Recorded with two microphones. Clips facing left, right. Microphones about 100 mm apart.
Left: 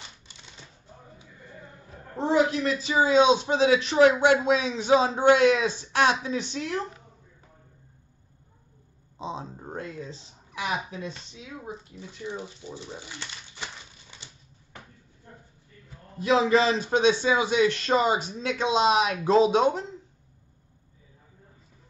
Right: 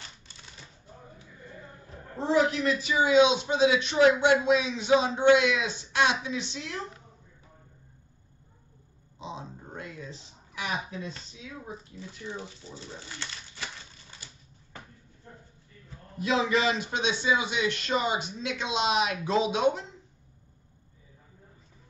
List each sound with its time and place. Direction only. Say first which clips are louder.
2.1 s a woman's voice: left 2 dB; 20° left (ahead or behind)
2.8 s speech: left 1 dB; 35° left (ahead or behind)
9.4 s speech: left 5 dB; 45° left (ahead or behind); by 13.7 s 15° left (ahead or behind)
16.2 s speech: left 5 dB; 30° left (ahead or behind)